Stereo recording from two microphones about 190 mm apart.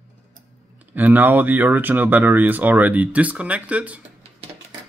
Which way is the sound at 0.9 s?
10° right (ahead or behind).